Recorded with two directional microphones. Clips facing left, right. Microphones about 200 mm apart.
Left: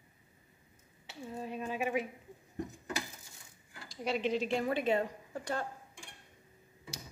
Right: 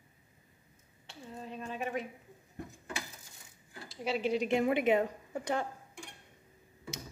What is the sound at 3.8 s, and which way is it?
A woman's voice, 5° right (ahead or behind).